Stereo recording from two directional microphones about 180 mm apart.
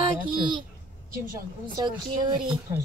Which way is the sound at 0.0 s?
25° right (ahead or behind).